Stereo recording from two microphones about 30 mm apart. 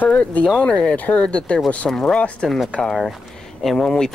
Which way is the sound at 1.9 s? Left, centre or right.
Centre.